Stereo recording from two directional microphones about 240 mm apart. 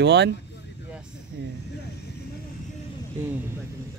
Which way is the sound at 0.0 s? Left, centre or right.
Right.